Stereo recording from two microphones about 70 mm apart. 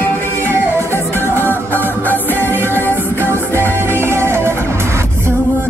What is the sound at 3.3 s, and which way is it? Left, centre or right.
Music, right.